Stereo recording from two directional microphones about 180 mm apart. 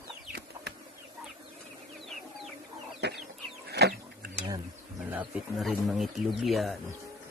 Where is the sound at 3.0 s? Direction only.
70° right (ahead or behind).